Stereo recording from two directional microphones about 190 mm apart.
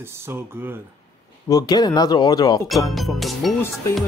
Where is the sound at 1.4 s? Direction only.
20° left (ahead or behind).